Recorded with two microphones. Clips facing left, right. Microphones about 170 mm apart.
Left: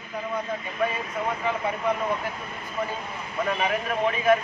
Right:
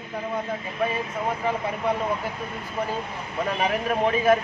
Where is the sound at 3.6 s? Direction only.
30° right (ahead or behind).